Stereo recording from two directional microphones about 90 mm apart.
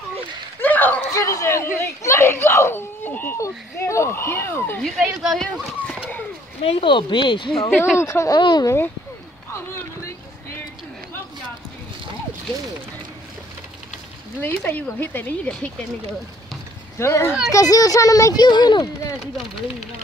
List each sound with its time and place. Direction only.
0.6 s a sound: 20° left (ahead or behind)
1.1 s a sound: 35° left (ahead or behind)
1.8 s speech: 30° left (ahead or behind)
4.9 s speech: centre (ahead or behind)
6.6 s speech: 80° left; by 7.6 s 65° left (ahead or behind)
8.0 s speech: 35° left (ahead or behind)
8.3 s speech: 50° left (ahead or behind)
8.6 s speech: 25° left (ahead or behind)
14.4 s speech: 20° left (ahead or behind)
17.0 s speech: 30° left (ahead or behind); by 19.1 s 55° left (ahead or behind)